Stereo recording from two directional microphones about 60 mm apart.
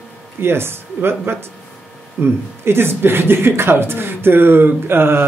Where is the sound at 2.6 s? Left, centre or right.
Right.